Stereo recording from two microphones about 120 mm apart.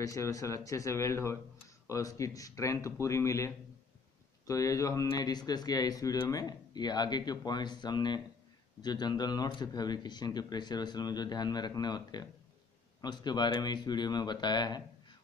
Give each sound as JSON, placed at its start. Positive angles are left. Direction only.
{"t": 0.0, "sound": "speech", "side_deg": 25}